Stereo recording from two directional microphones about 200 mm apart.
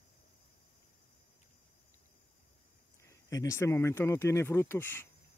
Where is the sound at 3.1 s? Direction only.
15° left (ahead or behind).